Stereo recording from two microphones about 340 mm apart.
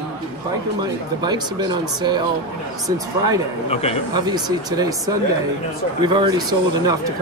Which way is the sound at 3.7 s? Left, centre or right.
Centre.